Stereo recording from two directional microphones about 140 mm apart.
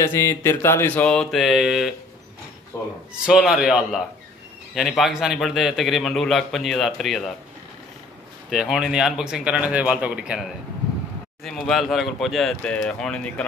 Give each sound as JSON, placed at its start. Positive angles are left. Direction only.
{"t": 0.0, "sound": "a sound", "side_deg": 20}
{"t": 1.0, "sound": "a man's voice", "side_deg": 5}
{"t": 2.7, "sound": "speech", "side_deg": 20}
{"t": 3.3, "sound": "a man's voice", "side_deg": -5}
{"t": 8.5, "sound": "speech", "side_deg": 0}
{"t": 11.4, "sound": "a man's voice", "side_deg": 0}